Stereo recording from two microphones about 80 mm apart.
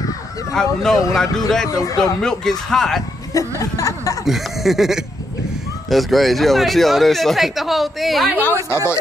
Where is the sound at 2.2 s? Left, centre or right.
Centre.